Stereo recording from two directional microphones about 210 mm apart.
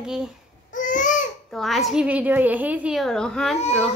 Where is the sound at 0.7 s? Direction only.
40° left (ahead or behind).